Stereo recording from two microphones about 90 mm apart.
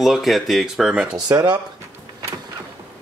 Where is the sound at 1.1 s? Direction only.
50° right (ahead or behind).